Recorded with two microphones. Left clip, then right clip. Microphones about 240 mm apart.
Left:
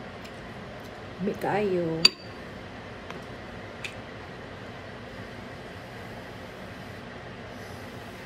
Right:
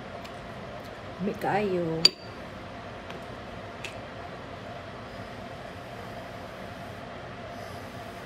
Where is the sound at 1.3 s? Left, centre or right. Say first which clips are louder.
Left 1 dB; centre.